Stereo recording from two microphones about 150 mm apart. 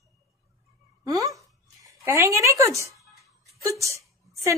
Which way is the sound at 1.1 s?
20° right (ahead or behind).